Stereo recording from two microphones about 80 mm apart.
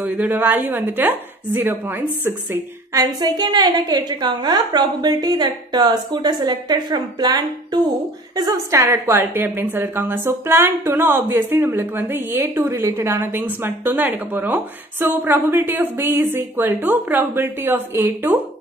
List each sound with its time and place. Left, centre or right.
0.0 s a woman's voice: right
2.9 s a sound: right
3.3 s a woman's voice: right
8.4 s a woman's voice: right